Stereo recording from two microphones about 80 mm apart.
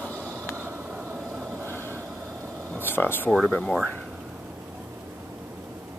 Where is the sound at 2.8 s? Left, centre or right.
Left.